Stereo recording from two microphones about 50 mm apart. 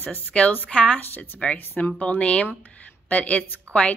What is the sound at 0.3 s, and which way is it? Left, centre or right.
A woman's voice, left.